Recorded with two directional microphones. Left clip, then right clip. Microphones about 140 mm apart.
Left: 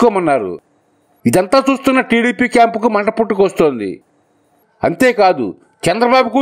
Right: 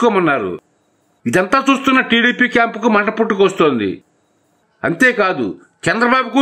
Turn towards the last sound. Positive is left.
turn(degrees=30)  # may be behind; listen again after turning